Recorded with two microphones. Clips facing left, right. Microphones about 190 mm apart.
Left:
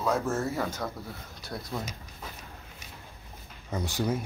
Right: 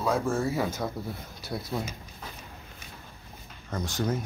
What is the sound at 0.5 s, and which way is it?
Speech, 10° right (ahead or behind).